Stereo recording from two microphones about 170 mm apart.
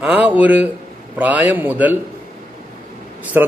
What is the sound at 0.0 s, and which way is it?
A man's voice, 10° right (ahead or behind).